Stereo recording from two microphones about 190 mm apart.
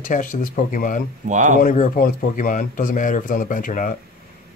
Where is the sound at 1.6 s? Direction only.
45° left (ahead or behind).